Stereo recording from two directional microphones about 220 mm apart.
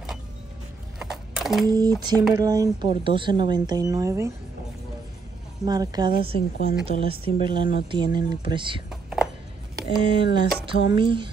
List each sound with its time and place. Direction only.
0.9 s a sound: centre (ahead or behind)
1.7 s speech: 15° right (ahead or behind)
5.7 s speech: 20° right (ahead or behind)
9.9 s speech: 20° right (ahead or behind)